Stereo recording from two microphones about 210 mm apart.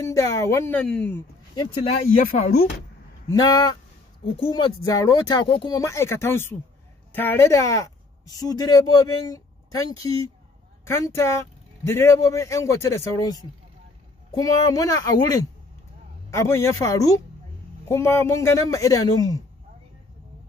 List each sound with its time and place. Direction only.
0.1 s speech: 15° left (ahead or behind)
1.5 s speech: 20° left (ahead or behind)
2.2 s speech: 40° left (ahead or behind)
3.3 s speech: 15° left (ahead or behind)
14.4 s speech: 15° left (ahead or behind)